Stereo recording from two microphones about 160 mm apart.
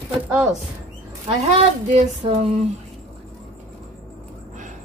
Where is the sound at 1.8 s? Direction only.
45° right (ahead or behind).